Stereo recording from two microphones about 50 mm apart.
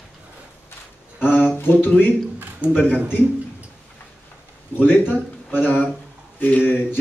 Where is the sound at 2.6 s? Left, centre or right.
Right.